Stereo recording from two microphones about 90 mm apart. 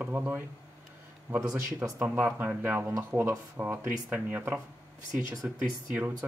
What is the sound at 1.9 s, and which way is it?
Speech, 25° right (ahead or behind).